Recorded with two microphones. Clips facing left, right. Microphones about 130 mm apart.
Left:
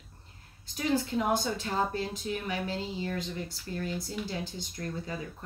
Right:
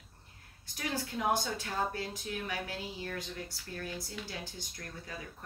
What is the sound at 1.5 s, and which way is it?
Speech, 20° left (ahead or behind).